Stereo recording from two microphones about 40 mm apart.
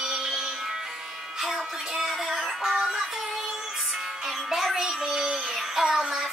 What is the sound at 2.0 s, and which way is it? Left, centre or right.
Child singing, centre.